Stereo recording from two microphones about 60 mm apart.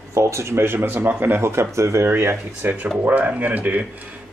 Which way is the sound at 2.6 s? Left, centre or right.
Right.